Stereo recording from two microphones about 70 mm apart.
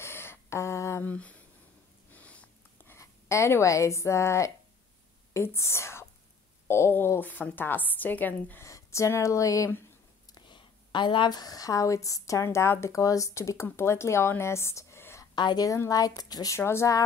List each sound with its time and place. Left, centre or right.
0.0 s a sound: left
1.0 s a sound: left
2.1 s sniff: left
3.0 s speech: left
8.5 s speech: left
10.3 s a woman's voice: left
12.4 s speech: left
12.9 s speech: left
14.4 s a sound: left
15.3 s a woman's voice: left
15.9 s speech: left
16.5 s speech: left